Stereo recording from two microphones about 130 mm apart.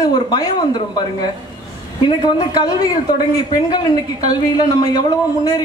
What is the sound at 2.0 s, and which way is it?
Speech, 30° left (ahead or behind).